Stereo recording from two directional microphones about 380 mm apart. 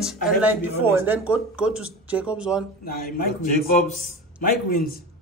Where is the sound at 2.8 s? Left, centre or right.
Left.